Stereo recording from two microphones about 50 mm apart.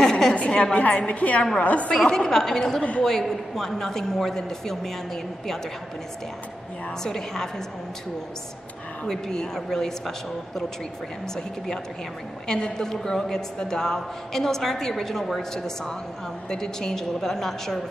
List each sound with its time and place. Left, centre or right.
0.0 s a sound: centre
0.3 s a woman's voice: left
1.0 s a woman's voice: left
1.9 s a woman's voice: centre
7.0 s a woman's voice: centre
9.0 s a woman's voice: centre